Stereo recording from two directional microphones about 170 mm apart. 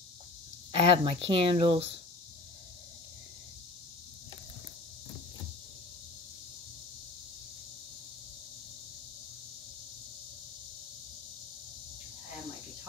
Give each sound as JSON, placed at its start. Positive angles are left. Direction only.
{"t": 0.7, "sound": "speech", "side_deg": -30}